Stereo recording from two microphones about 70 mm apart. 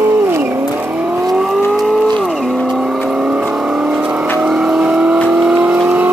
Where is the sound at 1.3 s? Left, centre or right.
Centre.